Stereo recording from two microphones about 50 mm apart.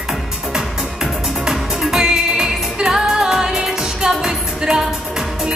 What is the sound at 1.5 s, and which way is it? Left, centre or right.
Music, centre.